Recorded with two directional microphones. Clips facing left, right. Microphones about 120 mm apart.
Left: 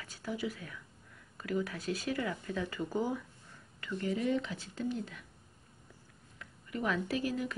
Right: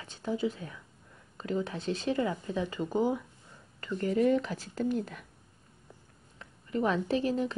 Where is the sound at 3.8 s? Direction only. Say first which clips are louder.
Right 7 dB; 45° right (ahead or behind).